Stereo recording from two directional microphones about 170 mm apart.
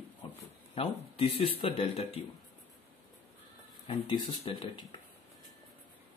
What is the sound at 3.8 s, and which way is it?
Speech, 35° left (ahead or behind).